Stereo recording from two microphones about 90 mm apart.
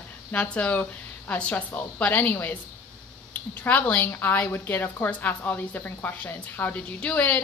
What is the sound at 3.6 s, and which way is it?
A woman's voice, 15° left (ahead or behind).